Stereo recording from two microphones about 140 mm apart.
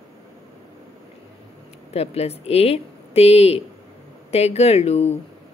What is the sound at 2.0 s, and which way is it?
Speech, 45° left (ahead or behind).